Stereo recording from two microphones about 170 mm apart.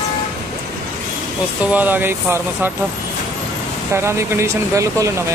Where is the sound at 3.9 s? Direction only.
15° right (ahead or behind).